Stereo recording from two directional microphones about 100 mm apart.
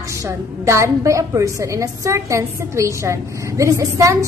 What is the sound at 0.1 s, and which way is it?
A woman's voice, 30° right (ahead or behind).